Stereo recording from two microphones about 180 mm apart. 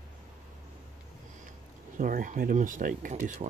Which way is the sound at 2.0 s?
50° right (ahead or behind).